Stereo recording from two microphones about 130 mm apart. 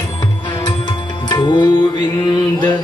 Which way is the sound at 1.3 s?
35° left (ahead or behind).